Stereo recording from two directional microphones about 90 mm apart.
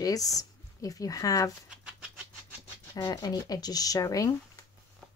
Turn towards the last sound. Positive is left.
turn(degrees=40)  # may be behind; listen again after turning